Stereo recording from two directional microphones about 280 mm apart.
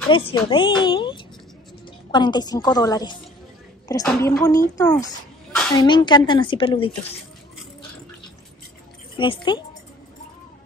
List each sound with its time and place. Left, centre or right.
0.1 s speech: centre
9.1 s a woman's voice: centre